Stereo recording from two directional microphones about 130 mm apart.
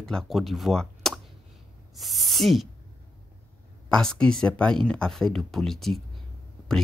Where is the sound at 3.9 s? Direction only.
5° left (ahead or behind).